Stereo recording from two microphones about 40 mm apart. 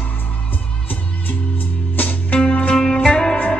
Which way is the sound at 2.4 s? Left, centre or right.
Left.